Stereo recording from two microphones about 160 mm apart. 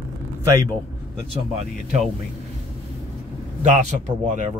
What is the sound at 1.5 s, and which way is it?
Speech, 40° right (ahead or behind).